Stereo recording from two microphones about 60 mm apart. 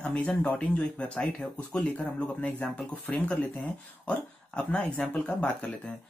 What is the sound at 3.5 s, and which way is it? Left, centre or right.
Speech, centre.